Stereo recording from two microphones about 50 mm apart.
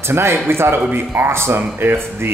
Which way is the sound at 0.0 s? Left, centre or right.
Right.